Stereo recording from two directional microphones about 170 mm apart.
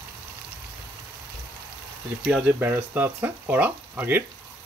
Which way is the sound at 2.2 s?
10° right (ahead or behind).